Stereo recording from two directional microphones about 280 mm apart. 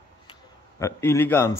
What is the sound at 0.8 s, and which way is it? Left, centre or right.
Speech, centre.